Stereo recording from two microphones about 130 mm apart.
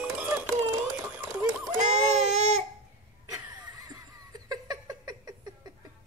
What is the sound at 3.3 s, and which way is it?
Laughter, 30° right (ahead or behind).